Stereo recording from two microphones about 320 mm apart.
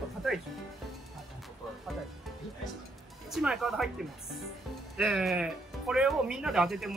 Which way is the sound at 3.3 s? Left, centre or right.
Centre.